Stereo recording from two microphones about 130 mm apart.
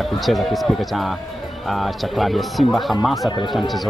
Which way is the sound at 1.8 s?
Centre (ahead or behind).